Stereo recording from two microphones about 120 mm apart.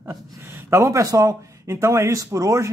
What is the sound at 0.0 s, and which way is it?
Speech, 20° right (ahead or behind).